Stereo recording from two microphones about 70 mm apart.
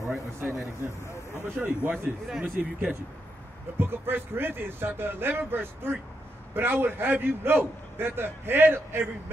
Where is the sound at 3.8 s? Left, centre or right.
Right.